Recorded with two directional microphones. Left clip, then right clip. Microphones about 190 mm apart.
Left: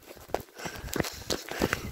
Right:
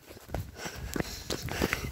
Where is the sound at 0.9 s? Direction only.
25° left (ahead or behind).